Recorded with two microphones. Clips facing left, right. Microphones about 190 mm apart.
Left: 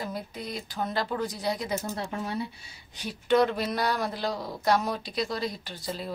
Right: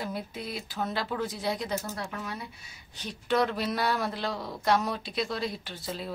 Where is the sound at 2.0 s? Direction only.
30° left (ahead or behind).